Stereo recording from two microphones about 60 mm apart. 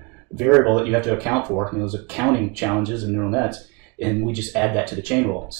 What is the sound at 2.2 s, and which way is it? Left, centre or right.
Speech, centre.